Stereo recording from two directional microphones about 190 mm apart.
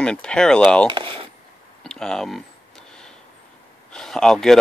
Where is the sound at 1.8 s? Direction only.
5° left (ahead or behind).